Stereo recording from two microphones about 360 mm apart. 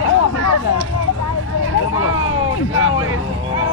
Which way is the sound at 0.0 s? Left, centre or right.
Right.